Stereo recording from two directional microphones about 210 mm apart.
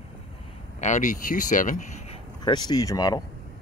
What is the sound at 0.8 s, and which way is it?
Speech, 35° left (ahead or behind).